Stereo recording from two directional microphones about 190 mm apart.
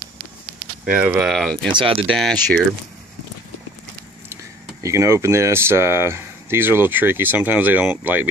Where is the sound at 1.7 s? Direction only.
25° right (ahead or behind).